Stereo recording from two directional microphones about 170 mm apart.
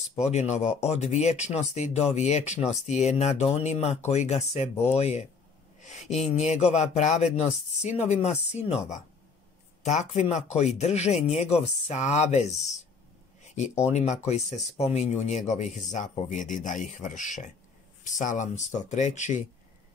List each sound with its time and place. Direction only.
0.0 s speech: 40° left (ahead or behind)
9.8 s speech: 40° left (ahead or behind)
13.8 s speech: 40° left (ahead or behind)